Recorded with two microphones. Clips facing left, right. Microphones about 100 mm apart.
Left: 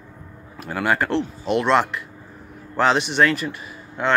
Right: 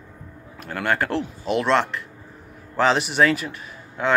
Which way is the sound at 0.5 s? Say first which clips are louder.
Left 2 dB; 5° left (ahead or behind).